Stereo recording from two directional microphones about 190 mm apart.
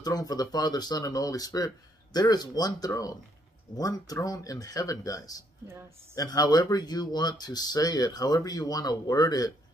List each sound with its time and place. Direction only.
0.0 s speech: 20° left (ahead or behind)